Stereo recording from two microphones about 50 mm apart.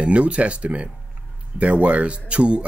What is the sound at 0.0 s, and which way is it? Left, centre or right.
Speech, right.